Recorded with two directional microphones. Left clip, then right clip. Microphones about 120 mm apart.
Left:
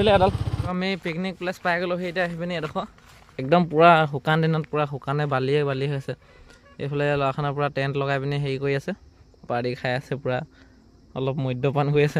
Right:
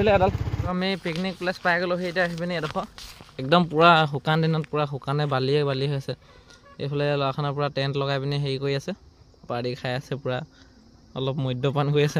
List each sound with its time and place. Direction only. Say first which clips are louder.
0.0 s speech: left 2 dB; 5° left (ahead or behind)
0.7 s a man's voice: even; 20° left (ahead or behind)